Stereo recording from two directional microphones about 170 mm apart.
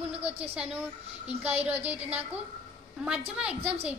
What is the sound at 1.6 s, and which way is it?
Speech, 10° right (ahead or behind).